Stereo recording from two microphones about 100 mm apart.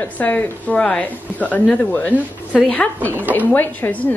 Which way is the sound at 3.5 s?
20° left (ahead or behind).